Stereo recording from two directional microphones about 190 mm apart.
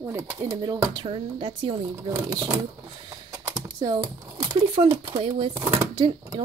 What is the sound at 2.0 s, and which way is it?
Speech, 15° right (ahead or behind).